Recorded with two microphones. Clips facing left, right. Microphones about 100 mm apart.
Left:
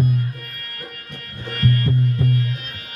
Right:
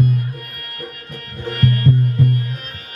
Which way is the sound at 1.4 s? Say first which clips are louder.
Right 3 dB; 50° right (ahead or behind).